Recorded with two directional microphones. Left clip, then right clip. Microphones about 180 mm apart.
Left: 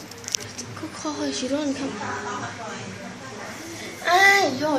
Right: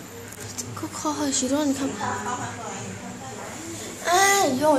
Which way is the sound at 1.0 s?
15° right (ahead or behind).